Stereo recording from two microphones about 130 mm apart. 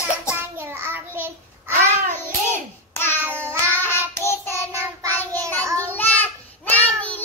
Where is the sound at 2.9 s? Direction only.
15° left (ahead or behind).